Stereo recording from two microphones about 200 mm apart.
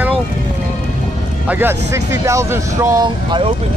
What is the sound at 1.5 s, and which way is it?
Speech, 10° right (ahead or behind).